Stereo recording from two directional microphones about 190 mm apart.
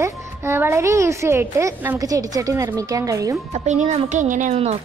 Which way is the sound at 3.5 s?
35° right (ahead or behind).